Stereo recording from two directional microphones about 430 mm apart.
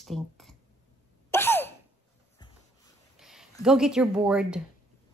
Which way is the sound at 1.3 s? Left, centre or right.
Centre.